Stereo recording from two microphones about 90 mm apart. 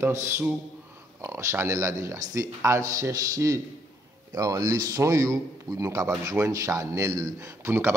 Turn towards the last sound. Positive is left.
turn(degrees=-30)  # may be behind; listen again after turning